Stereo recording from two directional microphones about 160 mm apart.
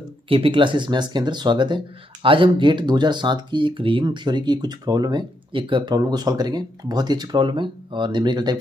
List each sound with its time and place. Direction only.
0.3 s speech: 35° right (ahead or behind)